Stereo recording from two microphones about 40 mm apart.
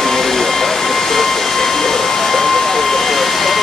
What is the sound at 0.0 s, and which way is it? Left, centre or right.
Vehicle, centre.